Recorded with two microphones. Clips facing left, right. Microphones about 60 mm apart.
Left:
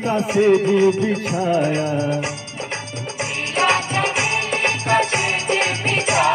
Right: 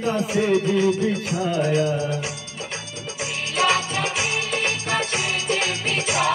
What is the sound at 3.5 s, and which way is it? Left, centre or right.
Music, left.